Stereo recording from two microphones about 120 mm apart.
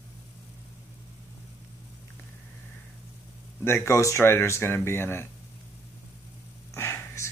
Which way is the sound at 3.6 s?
20° left (ahead or behind).